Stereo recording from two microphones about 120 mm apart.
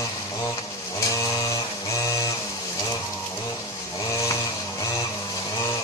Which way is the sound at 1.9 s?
25° left (ahead or behind).